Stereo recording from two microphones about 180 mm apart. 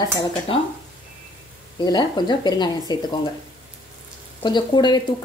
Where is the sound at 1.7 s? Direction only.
25° left (ahead or behind).